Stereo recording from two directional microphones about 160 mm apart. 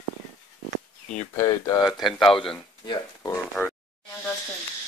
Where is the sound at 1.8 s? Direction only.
Centre (ahead or behind).